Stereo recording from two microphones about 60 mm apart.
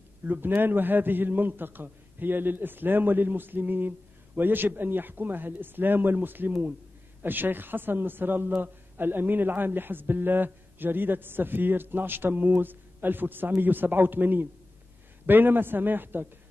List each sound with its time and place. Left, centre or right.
0.2 s a man's voice: right